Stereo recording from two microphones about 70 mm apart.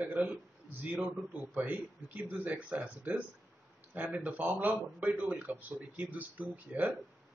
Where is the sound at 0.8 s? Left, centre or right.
Right.